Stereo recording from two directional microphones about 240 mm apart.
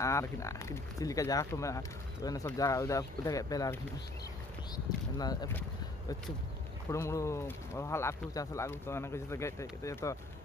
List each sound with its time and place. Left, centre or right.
0.0 s speech: centre